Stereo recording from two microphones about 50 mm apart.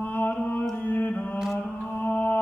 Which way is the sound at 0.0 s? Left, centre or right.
Left.